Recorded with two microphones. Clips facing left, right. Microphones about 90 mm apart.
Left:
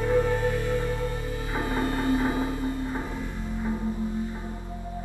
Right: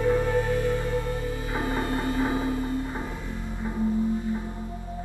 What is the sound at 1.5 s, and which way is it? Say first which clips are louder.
Music: left 1 dB; 20° right (ahead or behind).